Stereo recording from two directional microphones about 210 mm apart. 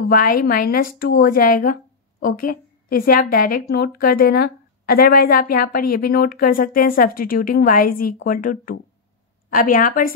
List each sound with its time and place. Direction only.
0.1 s a woman's voice: 40° left (ahead or behind)